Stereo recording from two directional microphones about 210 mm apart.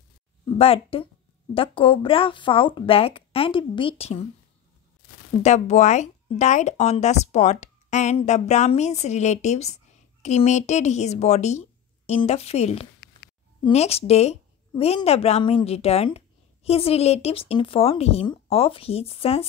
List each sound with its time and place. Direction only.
0.6 s speech: 25° left (ahead or behind)
5.4 s speech: 35° left (ahead or behind)